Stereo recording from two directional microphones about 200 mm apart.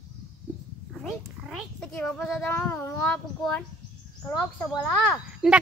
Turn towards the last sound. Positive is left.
turn(degrees=5)  # may be behind; listen again after turning